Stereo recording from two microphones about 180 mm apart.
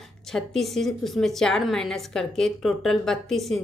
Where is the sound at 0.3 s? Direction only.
Centre (ahead or behind).